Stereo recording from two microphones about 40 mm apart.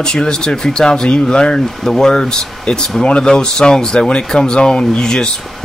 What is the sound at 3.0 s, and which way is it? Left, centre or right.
Speech, left.